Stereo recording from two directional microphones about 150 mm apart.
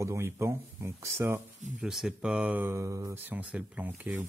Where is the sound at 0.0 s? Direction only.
20° right (ahead or behind).